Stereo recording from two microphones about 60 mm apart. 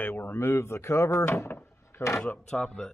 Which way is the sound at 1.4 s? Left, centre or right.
Left.